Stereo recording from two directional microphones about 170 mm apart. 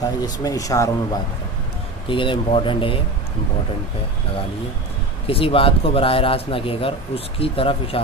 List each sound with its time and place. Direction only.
0.0 s speech: 20° left (ahead or behind)
5.2 s speech: 35° left (ahead or behind)